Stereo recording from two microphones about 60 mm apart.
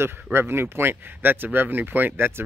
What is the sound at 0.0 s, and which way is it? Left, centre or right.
Speech, right.